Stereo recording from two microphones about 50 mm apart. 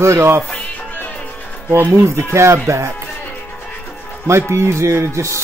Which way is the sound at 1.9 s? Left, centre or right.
Right.